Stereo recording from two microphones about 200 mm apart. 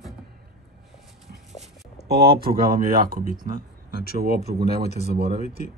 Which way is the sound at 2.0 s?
50° right (ahead or behind).